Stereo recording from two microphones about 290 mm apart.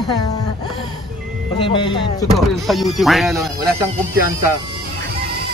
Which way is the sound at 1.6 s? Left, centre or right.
Centre.